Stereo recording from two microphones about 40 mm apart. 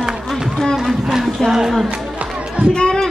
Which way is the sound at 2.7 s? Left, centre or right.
Left.